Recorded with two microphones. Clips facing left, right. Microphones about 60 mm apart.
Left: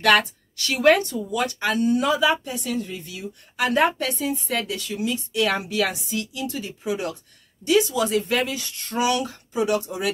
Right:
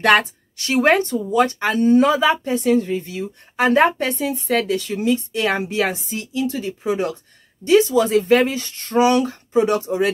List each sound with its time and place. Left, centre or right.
0.0 s a woman's voice: right